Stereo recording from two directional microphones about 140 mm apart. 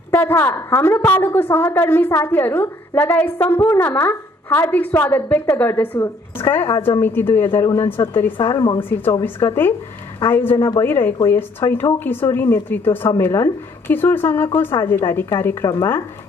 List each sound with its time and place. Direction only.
0.1 s a woman's voice: 15° left (ahead or behind)